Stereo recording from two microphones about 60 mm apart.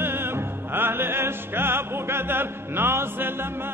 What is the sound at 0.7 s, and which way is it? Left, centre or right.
Opera, right.